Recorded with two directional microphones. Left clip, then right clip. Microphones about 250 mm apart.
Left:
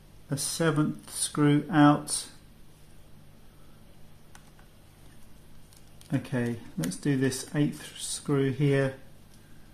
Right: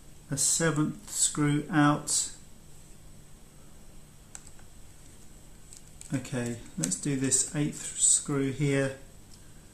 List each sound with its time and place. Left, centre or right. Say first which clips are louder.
0.3 s speech: even; centre
6.0 s speech: left 3 dB; left